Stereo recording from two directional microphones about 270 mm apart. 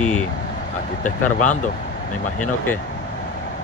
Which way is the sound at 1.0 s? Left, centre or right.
Left.